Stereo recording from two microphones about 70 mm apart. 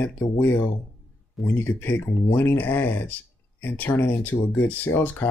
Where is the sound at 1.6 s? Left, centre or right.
Left.